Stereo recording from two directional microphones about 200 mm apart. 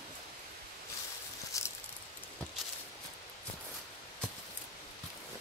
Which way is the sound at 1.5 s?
15° left (ahead or behind).